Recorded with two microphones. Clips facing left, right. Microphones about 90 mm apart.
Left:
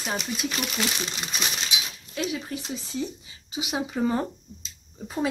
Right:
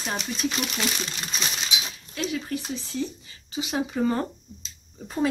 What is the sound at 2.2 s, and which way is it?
Speech, 15° left (ahead or behind).